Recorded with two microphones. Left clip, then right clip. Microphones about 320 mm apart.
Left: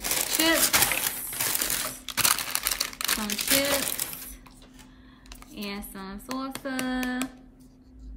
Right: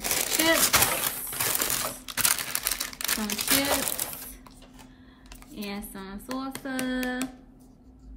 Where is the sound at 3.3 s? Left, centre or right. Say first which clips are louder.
Even; centre.